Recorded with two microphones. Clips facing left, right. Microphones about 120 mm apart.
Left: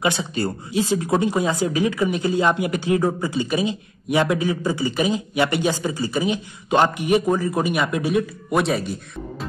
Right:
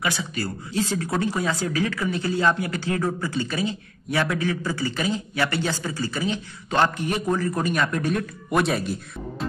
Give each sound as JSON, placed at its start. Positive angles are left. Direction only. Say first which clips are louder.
{"t": 0.0, "sound": "speech", "louder": "left 5 dB", "side_deg": 25}